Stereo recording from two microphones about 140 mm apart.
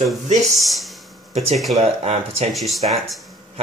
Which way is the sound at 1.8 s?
50° right (ahead or behind).